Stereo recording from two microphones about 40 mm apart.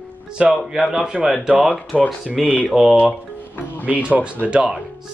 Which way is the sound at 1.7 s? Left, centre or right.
Left.